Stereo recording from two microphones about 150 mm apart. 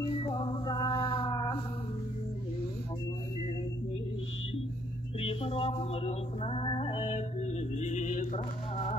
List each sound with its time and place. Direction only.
0.1 s music: 30° left (ahead or behind)
5.2 s music: 40° left (ahead or behind)
7.1 s music: 50° left (ahead or behind)